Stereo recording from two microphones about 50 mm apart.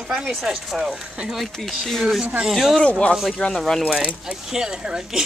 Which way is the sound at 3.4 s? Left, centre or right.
Centre.